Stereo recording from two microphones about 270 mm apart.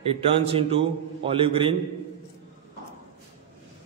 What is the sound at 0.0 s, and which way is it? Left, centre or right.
A man's voice, right.